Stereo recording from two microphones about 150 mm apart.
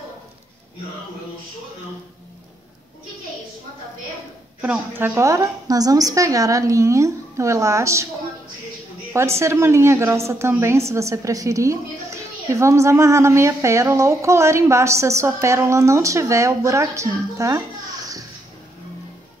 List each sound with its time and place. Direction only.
4.6 s a woman's voice: 10° right (ahead or behind)
9.1 s a woman's voice: 20° right (ahead or behind)